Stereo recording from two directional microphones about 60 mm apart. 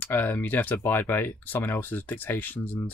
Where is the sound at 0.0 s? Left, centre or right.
Left.